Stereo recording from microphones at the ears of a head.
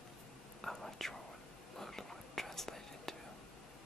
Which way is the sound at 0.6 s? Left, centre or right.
Centre.